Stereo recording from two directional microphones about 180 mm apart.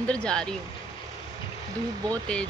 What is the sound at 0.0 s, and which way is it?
Speech, 5° left (ahead or behind).